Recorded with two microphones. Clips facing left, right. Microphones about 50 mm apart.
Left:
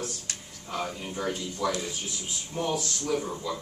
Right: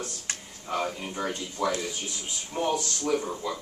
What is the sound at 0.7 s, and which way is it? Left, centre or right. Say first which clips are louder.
Speech: right 2 dB; centre.